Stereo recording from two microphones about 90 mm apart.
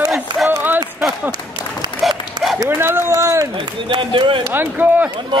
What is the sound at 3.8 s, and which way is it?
Speech, 65° right (ahead or behind).